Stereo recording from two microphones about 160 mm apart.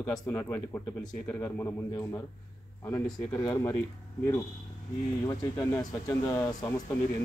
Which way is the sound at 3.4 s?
20° left (ahead or behind).